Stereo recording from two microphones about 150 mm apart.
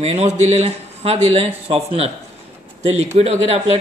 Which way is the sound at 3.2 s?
45° right (ahead or behind).